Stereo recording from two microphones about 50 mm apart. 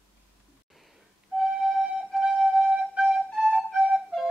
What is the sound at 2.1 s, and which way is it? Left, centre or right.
Music, centre.